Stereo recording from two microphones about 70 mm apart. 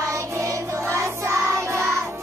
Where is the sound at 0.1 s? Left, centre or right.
Right.